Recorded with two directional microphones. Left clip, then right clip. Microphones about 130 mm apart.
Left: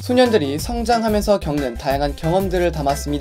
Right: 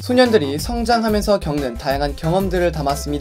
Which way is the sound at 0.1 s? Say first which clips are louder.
Right 1 dB; 40° left (ahead or behind).